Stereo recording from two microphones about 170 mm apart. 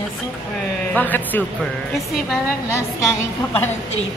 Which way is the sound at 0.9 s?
10° left (ahead or behind).